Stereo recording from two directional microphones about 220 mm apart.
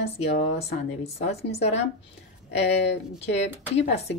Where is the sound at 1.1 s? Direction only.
30° left (ahead or behind).